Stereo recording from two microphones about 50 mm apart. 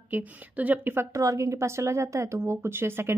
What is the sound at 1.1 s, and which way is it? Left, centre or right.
Speech, right.